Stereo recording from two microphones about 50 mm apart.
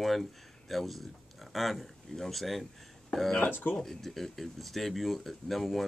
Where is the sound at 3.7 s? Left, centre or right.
Centre.